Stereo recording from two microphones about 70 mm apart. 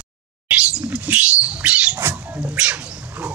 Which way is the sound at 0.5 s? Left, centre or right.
Centre.